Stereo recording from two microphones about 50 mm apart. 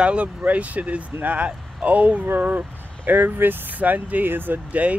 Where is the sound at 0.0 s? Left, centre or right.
Right.